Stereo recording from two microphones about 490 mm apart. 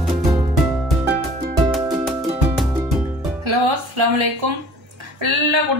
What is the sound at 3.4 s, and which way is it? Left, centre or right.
Music, right.